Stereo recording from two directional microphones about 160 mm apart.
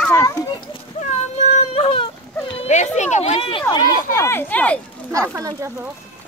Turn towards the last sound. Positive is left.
turn(degrees=-20)  # may be behind; listen again after turning